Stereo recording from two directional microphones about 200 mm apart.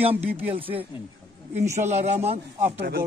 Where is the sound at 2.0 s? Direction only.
30° right (ahead or behind).